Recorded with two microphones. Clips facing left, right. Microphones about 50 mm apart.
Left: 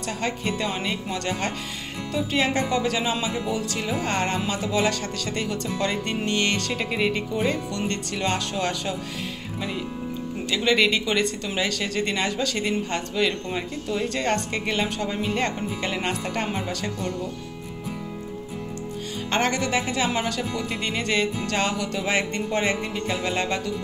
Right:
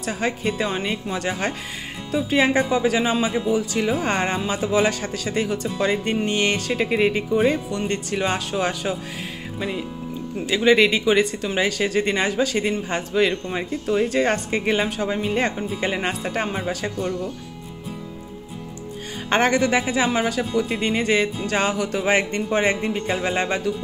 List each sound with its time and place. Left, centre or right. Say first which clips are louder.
0.0 s speech: right 3 dB; centre
19.2 s speech: right 5 dB; right
20.2 s speech: right 5 dB; centre